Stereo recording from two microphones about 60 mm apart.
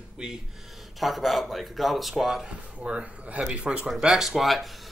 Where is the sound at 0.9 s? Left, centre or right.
Centre.